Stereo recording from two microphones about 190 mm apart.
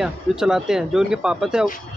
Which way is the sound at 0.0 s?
5° right (ahead or behind).